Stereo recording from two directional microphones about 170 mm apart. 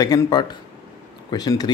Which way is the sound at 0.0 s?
25° left (ahead or behind).